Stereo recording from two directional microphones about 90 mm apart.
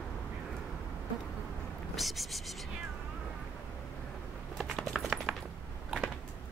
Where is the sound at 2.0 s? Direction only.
Centre (ahead or behind).